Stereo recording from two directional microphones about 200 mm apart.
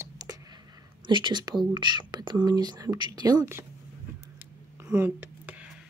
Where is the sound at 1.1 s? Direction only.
20° right (ahead or behind).